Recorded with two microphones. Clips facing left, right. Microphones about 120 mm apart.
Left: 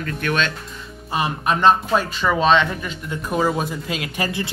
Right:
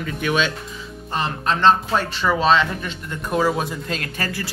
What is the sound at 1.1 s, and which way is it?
Speech, 10° left (ahead or behind).